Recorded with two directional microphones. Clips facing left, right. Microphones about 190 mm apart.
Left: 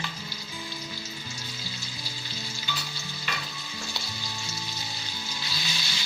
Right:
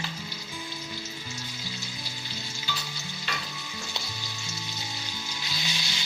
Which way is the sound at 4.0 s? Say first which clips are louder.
Even; 20° right (ahead or behind).